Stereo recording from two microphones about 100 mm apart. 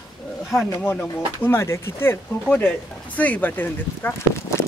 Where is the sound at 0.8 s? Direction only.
20° left (ahead or behind).